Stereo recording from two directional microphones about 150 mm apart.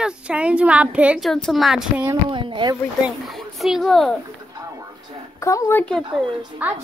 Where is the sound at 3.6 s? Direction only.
Centre (ahead or behind).